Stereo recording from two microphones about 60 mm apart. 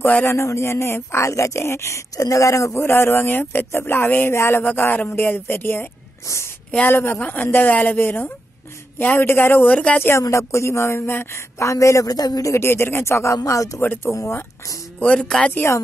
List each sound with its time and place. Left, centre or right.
0.0 s speech: left
0.4 s speech: left
2.7 s speech: left
6.2 s speech: left
6.9 s speech: left
7.2 s speech: left
9.7 s speech: centre
10.3 s speech: left
12.5 s speech: left
13.4 s speech: left
13.7 s speech: left
14.1 s speech: left
15.0 s speech: centre
15.2 s a woman's voice: centre